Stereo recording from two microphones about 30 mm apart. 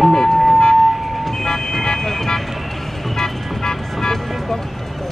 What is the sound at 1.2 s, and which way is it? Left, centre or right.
Vehicle, centre.